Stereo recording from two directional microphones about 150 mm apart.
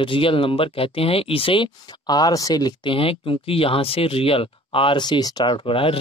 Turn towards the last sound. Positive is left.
turn(degrees=35)  # may be behind; listen again after turning